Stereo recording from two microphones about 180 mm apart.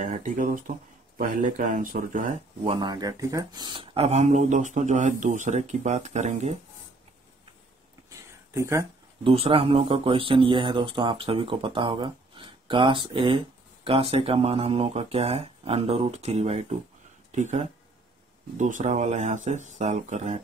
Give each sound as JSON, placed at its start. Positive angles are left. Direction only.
{"t": 0.0, "sound": "speech", "side_deg": -45}
{"t": 2.6, "sound": "speech", "side_deg": -30}
{"t": 8.5, "sound": "speech", "side_deg": -15}
{"t": 9.2, "sound": "speech", "side_deg": -30}